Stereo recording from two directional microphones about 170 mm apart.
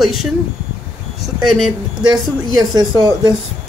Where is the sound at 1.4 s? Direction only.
Centre (ahead or behind).